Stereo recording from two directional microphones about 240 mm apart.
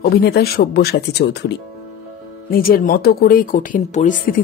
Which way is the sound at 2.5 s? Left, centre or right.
Left.